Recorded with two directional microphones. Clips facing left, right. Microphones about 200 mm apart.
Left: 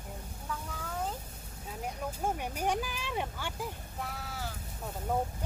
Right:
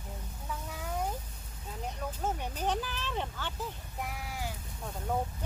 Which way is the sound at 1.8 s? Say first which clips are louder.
Left 1 dB; 10° left (ahead or behind).